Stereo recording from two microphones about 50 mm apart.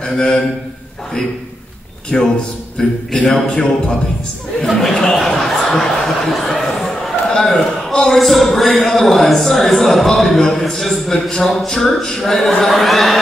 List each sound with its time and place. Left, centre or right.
0.0 s a man's voice: centre
2.1 s a man's voice: centre
5.0 s a sound: centre
7.4 s a man's voice: centre